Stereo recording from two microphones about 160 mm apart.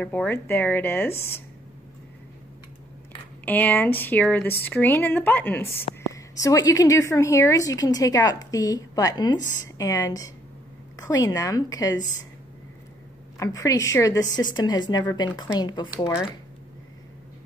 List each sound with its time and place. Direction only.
0.0 s speech: 10° left (ahead or behind)
3.4 s a woman's voice: 10° left (ahead or behind)
13.4 s a woman's voice: 20° left (ahead or behind)